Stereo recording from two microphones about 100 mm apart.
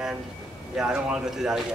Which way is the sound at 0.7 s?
5° right (ahead or behind).